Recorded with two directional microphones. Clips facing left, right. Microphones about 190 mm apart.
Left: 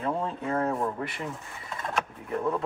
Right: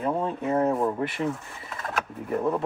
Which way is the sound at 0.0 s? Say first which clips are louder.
Right 3 dB; 20° right (ahead or behind).